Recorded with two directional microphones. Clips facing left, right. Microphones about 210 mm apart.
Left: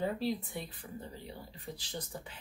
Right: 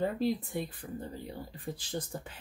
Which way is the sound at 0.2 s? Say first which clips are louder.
Right 4 dB; 50° right (ahead or behind).